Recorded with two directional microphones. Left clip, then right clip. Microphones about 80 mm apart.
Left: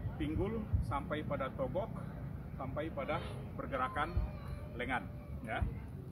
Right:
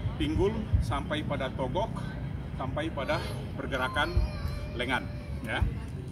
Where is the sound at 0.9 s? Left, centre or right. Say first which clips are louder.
Right 6 dB; left.